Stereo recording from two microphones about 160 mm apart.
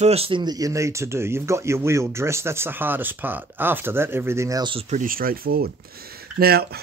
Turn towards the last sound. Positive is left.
turn(degrees=-75)  # may be behind; listen again after turning